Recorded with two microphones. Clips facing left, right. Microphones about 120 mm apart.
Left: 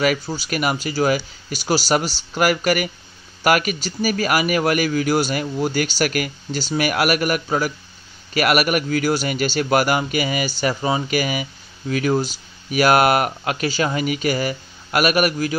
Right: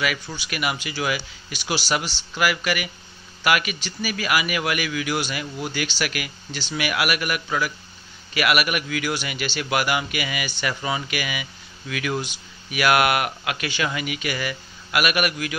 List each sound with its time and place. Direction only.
0.0 s speech: 40° left (ahead or behind)